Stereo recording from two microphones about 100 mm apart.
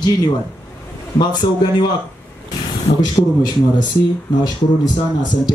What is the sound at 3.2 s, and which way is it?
Speech, 45° left (ahead or behind).